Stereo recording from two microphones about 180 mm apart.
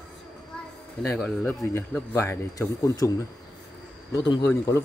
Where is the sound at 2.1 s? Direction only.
15° left (ahead or behind).